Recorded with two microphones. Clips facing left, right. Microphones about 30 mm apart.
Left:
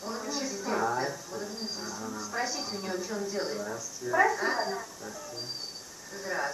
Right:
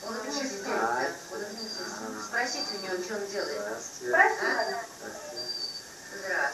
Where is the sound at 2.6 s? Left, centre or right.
Right.